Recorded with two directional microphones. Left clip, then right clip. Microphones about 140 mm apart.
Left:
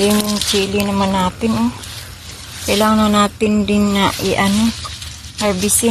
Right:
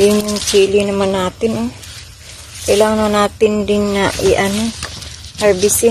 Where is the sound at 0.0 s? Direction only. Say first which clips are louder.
Right 3 dB; 45° right (ahead or behind).